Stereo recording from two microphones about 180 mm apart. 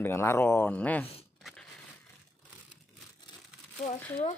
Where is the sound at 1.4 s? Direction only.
5° left (ahead or behind).